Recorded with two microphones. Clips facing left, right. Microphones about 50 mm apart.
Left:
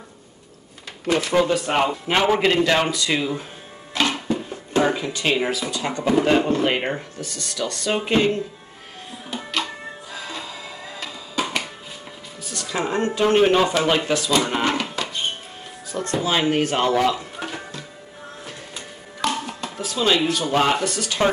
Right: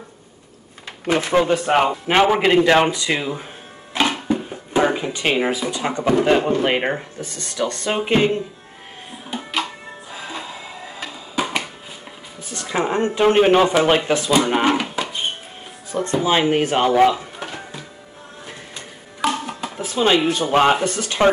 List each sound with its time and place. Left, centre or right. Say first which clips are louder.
1.0 s a man's voice: right 2 dB; right
3.9 s a sound: right 2 dB; centre
6.4 s speech: right 2 dB; centre
6.8 s a man's voice: right 3 dB; right
9.3 s music: right 2 dB; centre
12.4 s speech: right 3 dB; right
14.3 s a sound: right 5 dB; centre
15.9 s a man's voice: right 4 dB; right
17.4 s music: even; centre
19.2 s music: right 3 dB; centre
19.8 s a man's voice: right 3 dB; right